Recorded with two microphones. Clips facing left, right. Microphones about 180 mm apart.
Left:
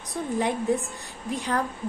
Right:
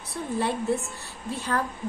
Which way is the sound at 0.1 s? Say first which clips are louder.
Left 1 dB; 15° left (ahead or behind).